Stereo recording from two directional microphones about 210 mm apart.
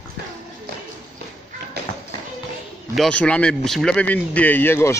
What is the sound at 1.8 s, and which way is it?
Tap, 50° right (ahead or behind).